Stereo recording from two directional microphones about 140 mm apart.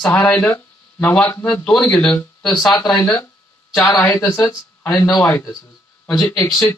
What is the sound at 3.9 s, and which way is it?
Speech, 25° left (ahead or behind).